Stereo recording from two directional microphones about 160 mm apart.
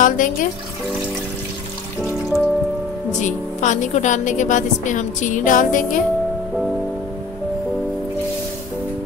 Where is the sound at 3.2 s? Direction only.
50° left (ahead or behind).